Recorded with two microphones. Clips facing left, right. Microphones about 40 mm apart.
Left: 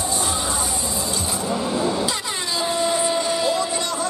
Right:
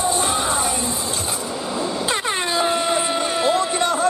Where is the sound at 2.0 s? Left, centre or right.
Right.